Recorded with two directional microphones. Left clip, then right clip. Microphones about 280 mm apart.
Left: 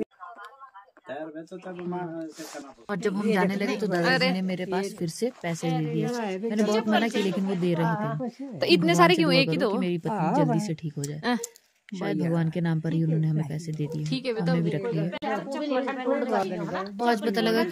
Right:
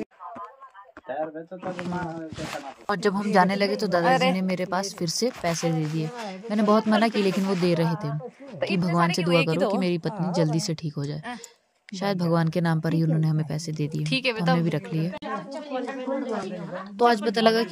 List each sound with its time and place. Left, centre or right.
2.9 s speech: centre
4.0 s speech: centre
4.4 s speech: centre
8.5 s speech: left
9.8 s speech: centre
14.0 s speech: centre
17.0 s speech: right